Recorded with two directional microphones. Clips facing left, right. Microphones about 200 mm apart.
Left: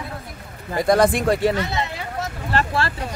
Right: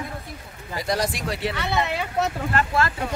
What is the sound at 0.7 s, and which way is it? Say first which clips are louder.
Speech: left 9 dB; 55° left (ahead or behind).